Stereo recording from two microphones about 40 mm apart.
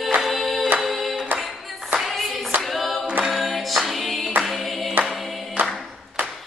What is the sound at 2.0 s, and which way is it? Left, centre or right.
Singing, centre.